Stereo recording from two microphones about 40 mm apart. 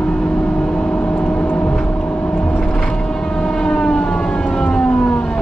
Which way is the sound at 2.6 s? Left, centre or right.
Centre.